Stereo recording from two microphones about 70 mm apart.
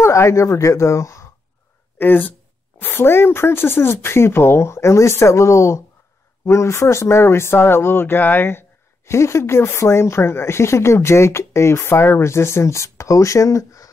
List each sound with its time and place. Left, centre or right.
0.0 s speech: left
2.0 s speech: left